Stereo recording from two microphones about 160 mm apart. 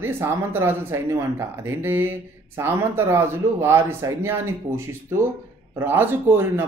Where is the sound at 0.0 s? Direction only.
15° right (ahead or behind).